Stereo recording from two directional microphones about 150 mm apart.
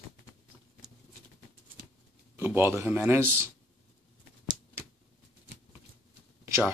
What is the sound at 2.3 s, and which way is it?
Speech, 15° right (ahead or behind).